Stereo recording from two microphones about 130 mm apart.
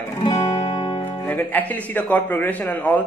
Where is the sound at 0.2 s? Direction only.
30° left (ahead or behind).